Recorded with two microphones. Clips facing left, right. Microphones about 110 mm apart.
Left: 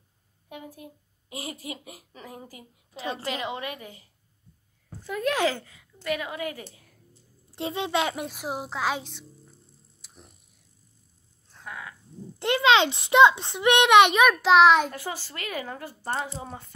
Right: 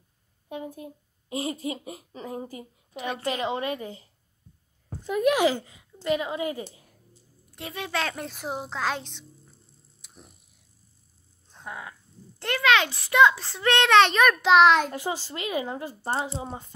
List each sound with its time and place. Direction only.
0.5 s a child's voice: 30° right (ahead or behind)
3.0 s a woman's voice: 30° left (ahead or behind)
3.3 s a child's voice: 30° right (ahead or behind)
5.0 s a child's voice: 15° right (ahead or behind)
7.5 s a woman's voice: 25° left (ahead or behind); by 9.2 s 5° left (ahead or behind)
10.0 s tick-tock: centre (ahead or behind)
11.5 s a sound: 25° right (ahead or behind)
12.4 s a child's voice: 20° left (ahead or behind); by 14.9 s 5° left (ahead or behind)
14.9 s a child's voice: 20° right (ahead or behind)